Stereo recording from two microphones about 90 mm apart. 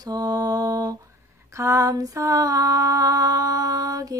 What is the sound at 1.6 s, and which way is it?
Female singing, 35° right (ahead or behind).